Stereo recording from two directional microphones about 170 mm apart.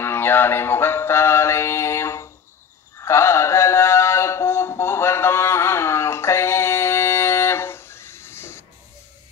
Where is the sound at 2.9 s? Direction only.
15° left (ahead or behind).